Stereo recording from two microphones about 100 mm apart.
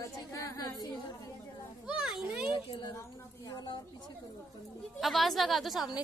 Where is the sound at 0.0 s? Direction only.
30° left (ahead or behind).